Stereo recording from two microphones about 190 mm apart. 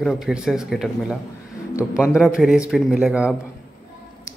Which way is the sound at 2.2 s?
5° right (ahead or behind).